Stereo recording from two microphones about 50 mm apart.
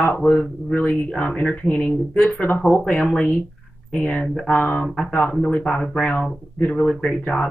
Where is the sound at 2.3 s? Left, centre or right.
Left.